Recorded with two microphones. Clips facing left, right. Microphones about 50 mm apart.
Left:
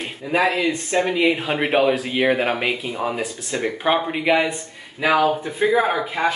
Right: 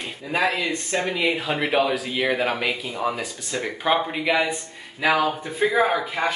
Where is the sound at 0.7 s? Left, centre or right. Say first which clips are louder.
Left 4 dB; left.